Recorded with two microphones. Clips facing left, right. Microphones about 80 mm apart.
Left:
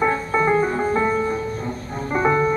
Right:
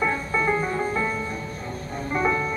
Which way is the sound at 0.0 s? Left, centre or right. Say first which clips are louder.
Left 5 dB; left.